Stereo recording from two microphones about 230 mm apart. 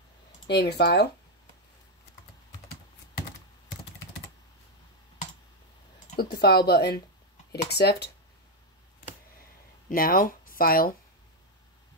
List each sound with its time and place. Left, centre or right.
0.5 s speech: left
6.0 s speech: left
9.8 s speech: left